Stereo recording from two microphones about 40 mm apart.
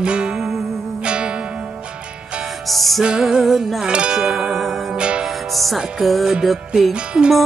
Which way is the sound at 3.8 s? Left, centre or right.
Right.